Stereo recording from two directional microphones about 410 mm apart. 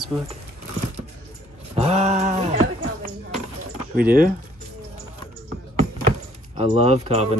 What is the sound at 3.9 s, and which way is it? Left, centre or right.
Speech, right.